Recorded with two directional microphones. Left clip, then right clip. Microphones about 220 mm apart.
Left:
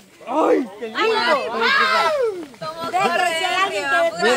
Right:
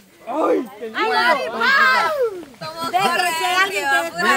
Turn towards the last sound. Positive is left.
turn(degrees=-50)  # may be behind; listen again after turning